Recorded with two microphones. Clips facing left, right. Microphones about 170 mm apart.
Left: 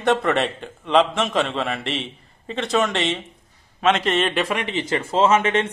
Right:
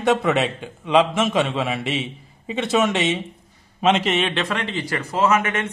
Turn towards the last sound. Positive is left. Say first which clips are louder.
# left 2 dB
turn(degrees=30)  # may be behind; listen again after turning